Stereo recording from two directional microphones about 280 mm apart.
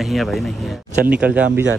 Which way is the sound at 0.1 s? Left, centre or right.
Centre.